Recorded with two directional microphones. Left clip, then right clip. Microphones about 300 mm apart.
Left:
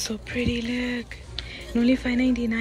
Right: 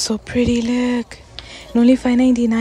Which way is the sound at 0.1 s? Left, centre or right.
Centre.